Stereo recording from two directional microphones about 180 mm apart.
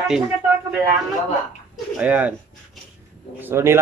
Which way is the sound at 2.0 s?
10° right (ahead or behind).